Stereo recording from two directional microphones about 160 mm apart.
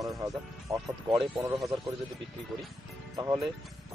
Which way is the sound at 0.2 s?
25° right (ahead or behind).